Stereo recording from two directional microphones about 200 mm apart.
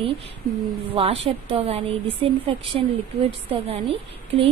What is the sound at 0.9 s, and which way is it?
A woman's voice, 30° right (ahead or behind).